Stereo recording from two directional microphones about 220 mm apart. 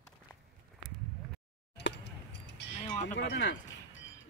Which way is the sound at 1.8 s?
55° left (ahead or behind).